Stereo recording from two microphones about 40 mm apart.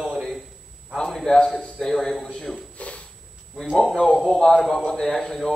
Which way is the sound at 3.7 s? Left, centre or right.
Left.